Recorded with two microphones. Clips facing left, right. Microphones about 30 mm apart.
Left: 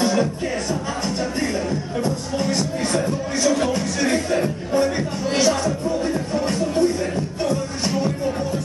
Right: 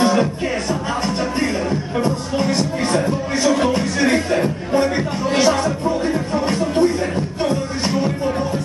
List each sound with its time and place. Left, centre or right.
0.0 s music: right